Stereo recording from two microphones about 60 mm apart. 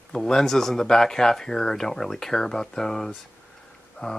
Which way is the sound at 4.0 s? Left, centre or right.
Left.